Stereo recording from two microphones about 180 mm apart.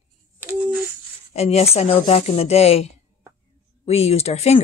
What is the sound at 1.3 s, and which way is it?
Speech, 35° left (ahead or behind).